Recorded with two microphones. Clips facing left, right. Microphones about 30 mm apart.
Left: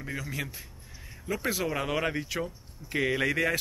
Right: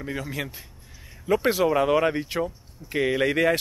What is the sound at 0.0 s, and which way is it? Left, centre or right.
Speech, centre.